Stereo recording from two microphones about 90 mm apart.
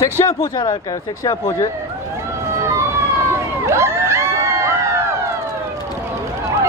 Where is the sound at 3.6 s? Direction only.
30° right (ahead or behind).